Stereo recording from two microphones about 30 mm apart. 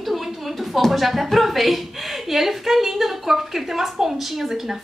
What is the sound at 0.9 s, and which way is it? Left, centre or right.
A woman's voice, centre.